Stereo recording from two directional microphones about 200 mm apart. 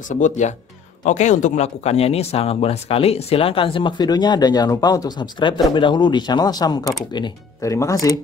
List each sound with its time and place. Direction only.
0.1 s speech: 35° left (ahead or behind); by 8.2 s 15° left (ahead or behind)